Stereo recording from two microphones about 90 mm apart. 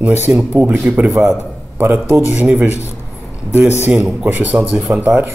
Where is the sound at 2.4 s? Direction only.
20° right (ahead or behind).